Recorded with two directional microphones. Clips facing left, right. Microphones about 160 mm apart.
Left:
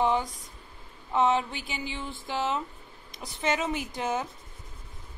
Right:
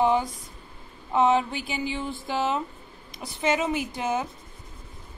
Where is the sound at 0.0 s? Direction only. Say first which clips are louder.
Right 3 dB; 10° right (ahead or behind).